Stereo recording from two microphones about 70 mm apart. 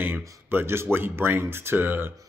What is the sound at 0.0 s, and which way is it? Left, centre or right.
Speech, right.